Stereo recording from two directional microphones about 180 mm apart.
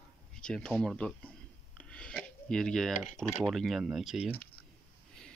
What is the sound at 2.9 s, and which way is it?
Speech, 45° left (ahead or behind).